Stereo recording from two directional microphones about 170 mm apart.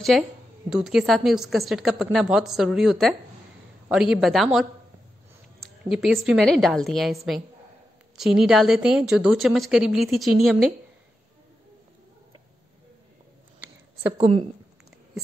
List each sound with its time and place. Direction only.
0.1 s a woman's voice: centre (ahead or behind)
8.2 s a woman's voice: 5° right (ahead or behind)
14.1 s speech: 30° right (ahead or behind)